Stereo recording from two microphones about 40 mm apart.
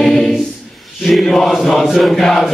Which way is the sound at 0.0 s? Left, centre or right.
Centre.